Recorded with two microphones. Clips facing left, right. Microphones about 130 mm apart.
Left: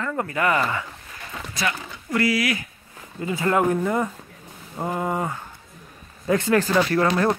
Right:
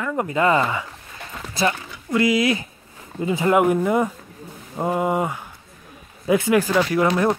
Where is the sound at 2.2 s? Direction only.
25° right (ahead or behind).